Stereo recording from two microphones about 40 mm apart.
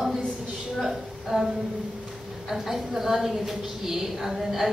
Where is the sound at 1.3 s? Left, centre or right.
Centre.